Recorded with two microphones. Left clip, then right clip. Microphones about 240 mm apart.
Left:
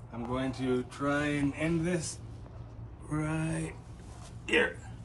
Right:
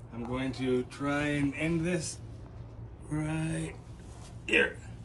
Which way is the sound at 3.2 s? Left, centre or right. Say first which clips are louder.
Left 1 dB; centre.